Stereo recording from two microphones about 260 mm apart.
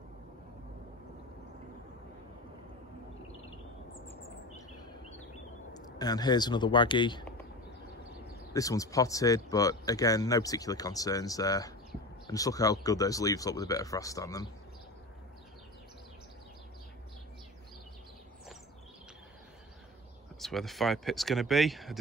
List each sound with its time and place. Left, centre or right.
5.9 s speech: centre
8.5 s speech: centre
20.3 s speech: centre